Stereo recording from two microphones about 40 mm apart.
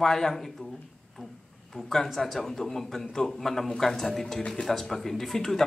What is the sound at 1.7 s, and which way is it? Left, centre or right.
Speech, centre.